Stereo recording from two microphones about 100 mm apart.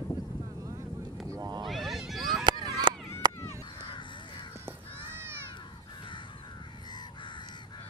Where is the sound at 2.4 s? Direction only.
45° right (ahead or behind).